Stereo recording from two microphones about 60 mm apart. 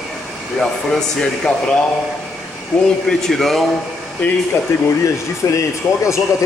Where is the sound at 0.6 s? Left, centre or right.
Centre.